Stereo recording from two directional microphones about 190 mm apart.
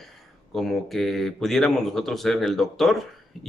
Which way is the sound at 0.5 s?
Centre (ahead or behind).